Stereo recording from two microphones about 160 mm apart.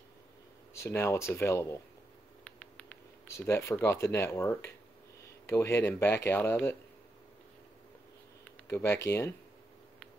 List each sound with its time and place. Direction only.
0.7 s speech: 15° left (ahead or behind)
3.3 s speech: 15° left (ahead or behind)
8.6 s speech: 15° left (ahead or behind)